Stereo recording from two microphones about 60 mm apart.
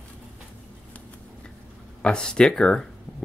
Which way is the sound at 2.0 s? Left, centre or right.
Centre.